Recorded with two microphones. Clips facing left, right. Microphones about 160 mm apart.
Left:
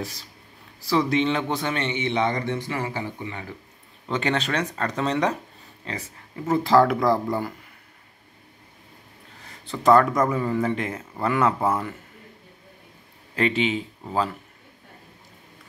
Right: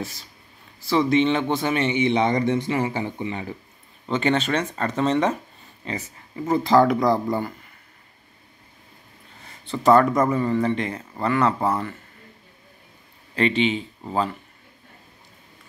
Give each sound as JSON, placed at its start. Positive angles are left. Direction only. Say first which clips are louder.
{"t": 0.0, "sound": "a man's voice", "louder": "right 1 dB", "side_deg": 0}
{"t": 4.1, "sound": "speech", "louder": "right 3 dB", "side_deg": 0}
{"t": 9.7, "sound": "speech", "louder": "right 1 dB", "side_deg": 0}
{"t": 13.3, "sound": "speech", "louder": "right 2 dB", "side_deg": 5}